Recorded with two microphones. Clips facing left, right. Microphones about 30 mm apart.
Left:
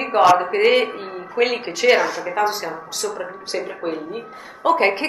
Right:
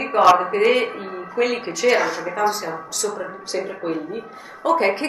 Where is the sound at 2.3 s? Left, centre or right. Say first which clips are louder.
Left 1 dB; centre.